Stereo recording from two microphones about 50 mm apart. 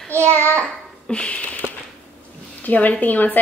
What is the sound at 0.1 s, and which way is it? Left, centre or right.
Speech, right.